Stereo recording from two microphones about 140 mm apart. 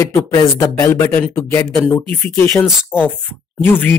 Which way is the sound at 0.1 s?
20° left (ahead or behind).